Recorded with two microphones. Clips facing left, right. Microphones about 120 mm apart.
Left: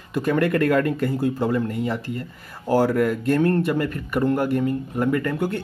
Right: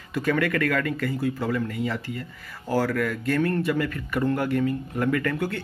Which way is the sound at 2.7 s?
25° left (ahead or behind).